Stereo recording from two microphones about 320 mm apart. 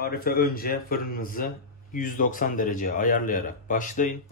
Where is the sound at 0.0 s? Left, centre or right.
Left.